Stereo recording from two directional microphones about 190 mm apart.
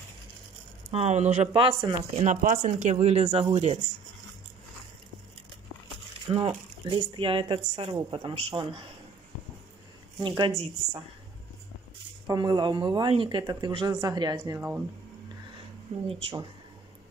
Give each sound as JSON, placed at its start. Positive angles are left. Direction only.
{"t": 0.9, "sound": "speech", "side_deg": -35}
{"t": 2.2, "sound": "speech", "side_deg": -45}
{"t": 6.2, "sound": "speech", "side_deg": -25}
{"t": 10.1, "sound": "speech", "side_deg": -25}
{"t": 12.3, "sound": "speech", "side_deg": -20}
{"t": 16.1, "sound": "speech", "side_deg": -25}